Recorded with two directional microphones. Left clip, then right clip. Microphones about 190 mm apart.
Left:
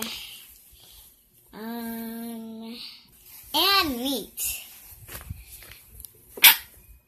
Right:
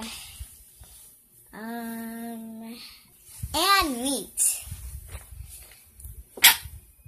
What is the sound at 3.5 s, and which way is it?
Babbling, 20° right (ahead or behind).